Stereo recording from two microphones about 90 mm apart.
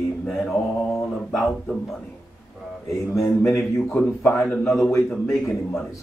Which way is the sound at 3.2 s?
30° left (ahead or behind).